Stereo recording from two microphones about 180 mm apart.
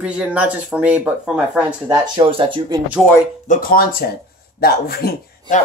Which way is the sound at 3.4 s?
45° left (ahead or behind).